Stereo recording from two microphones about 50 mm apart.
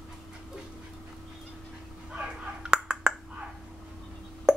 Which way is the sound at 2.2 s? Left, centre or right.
Centre.